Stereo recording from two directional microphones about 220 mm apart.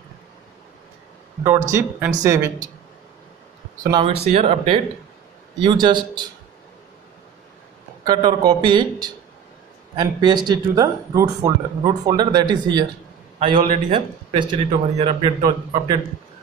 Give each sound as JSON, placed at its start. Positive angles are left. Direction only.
{"t": 1.4, "sound": "speech", "side_deg": -10}
{"t": 3.8, "sound": "speech", "side_deg": -20}
{"t": 8.0, "sound": "speech", "side_deg": -20}